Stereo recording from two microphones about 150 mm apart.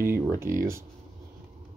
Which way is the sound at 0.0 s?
15° right (ahead or behind).